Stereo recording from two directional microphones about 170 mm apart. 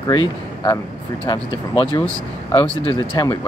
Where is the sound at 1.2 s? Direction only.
30° left (ahead or behind).